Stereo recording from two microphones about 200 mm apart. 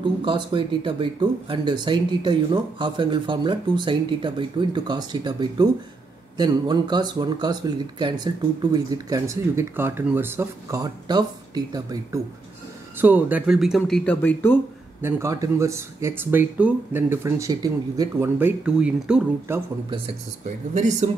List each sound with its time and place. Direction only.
0.2 s speech: 25° right (ahead or behind); by 14.6 s 10° left (ahead or behind)
15.0 s speech: 10° right (ahead or behind)
20.4 s speech: 35° right (ahead or behind)